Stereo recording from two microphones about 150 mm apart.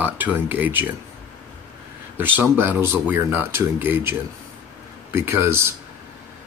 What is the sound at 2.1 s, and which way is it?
Speech, 15° right (ahead or behind).